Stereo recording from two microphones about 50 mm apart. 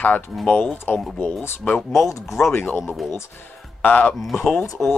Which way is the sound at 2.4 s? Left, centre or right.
Left.